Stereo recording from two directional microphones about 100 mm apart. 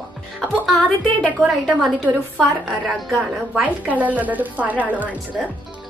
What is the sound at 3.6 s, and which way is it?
Speech, 15° right (ahead or behind).